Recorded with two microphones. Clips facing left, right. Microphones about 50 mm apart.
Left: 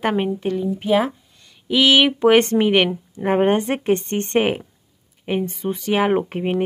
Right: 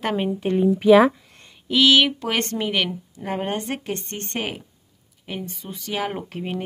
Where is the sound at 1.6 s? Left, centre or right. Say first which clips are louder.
Left 2 dB; centre.